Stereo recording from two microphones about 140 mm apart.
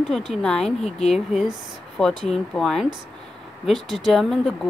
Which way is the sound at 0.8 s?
50° left (ahead or behind).